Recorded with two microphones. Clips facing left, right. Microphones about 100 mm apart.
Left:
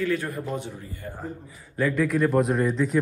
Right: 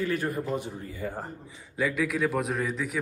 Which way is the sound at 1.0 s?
90° right.